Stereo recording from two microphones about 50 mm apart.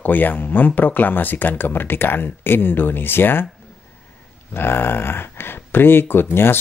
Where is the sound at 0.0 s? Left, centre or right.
Left.